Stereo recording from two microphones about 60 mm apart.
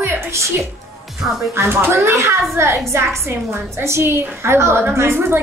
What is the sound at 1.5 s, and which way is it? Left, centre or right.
A woman's voice, right.